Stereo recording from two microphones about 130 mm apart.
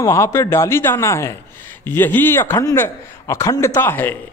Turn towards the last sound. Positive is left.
turn(degrees=15)  # may be behind; listen again after turning